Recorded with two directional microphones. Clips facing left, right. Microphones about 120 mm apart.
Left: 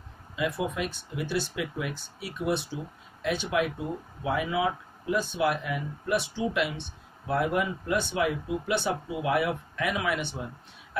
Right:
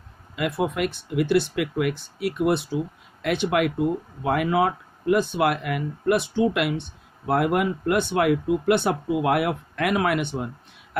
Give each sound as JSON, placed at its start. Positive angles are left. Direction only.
{"t": 0.4, "sound": "speech", "side_deg": -60}